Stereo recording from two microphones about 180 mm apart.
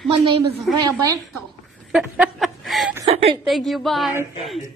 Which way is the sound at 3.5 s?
Centre (ahead or behind).